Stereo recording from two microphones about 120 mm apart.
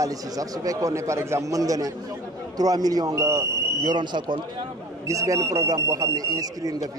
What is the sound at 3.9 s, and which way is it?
Speech, 40° right (ahead or behind).